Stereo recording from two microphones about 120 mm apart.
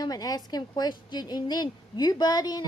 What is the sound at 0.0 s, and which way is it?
A woman's voice, 30° left (ahead or behind).